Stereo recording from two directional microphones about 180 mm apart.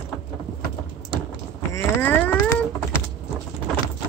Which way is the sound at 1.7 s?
15° left (ahead or behind).